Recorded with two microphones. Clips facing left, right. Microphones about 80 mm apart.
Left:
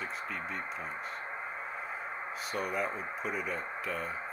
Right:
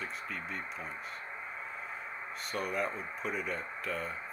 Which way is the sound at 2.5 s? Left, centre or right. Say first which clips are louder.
Even; centre.